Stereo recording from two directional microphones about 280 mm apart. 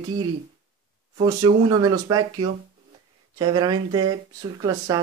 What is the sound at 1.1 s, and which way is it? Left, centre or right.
Speech, centre.